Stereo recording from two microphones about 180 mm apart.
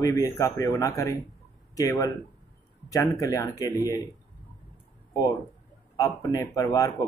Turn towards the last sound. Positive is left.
turn(degrees=20)  # may be behind; listen again after turning